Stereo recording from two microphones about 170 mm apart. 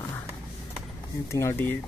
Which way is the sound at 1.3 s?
15° left (ahead or behind).